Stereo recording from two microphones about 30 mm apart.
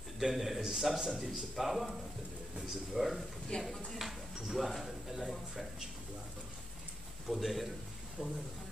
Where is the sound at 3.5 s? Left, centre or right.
Left.